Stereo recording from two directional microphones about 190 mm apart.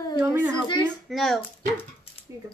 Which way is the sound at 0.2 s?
10° right (ahead or behind).